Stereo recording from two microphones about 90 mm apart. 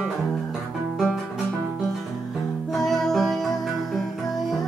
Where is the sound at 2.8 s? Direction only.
5° left (ahead or behind).